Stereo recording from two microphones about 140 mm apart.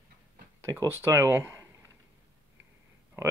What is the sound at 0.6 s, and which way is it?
Speech, 20° right (ahead or behind).